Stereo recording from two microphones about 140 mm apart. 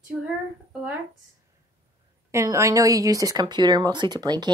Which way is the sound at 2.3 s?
20° right (ahead or behind).